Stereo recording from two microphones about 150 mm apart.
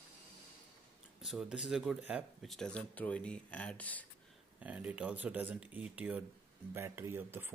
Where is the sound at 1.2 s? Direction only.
5° right (ahead or behind).